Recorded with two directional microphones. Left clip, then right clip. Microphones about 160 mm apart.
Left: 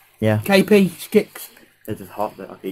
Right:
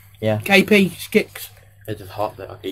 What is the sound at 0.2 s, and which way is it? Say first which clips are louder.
Speech: right 1 dB; 35° left (ahead or behind).